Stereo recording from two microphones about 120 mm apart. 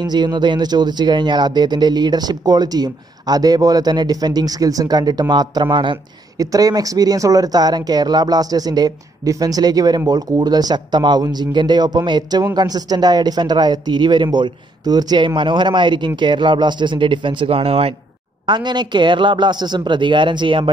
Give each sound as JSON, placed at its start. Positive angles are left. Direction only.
{"t": 0.0, "sound": "speech", "side_deg": -40}
{"t": 6.3, "sound": "speech", "side_deg": -30}
{"t": 18.5, "sound": "speech", "side_deg": -40}